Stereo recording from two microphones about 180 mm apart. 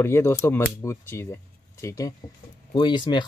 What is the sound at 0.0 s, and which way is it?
Speech, 15° left (ahead or behind).